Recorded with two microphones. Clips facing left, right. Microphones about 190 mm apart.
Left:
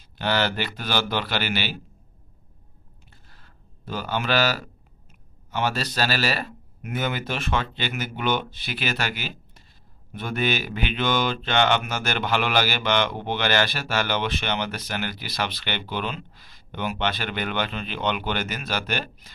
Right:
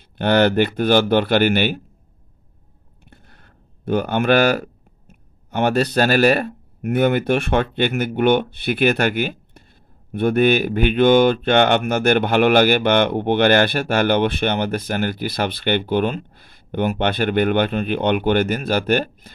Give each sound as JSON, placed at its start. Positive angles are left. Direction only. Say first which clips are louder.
{"t": 0.2, "sound": "speech", "louder": "right 9 dB", "side_deg": -55}
{"t": 3.1, "sound": "a sound", "louder": "right 8 dB", "side_deg": -60}
{"t": 5.5, "sound": "speech", "louder": "right 8 dB", "side_deg": -55}